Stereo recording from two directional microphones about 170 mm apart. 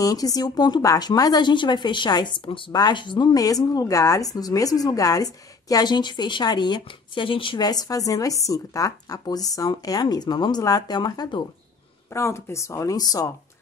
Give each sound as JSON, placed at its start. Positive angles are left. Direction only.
{"t": 0.0, "sound": "speech", "side_deg": 20}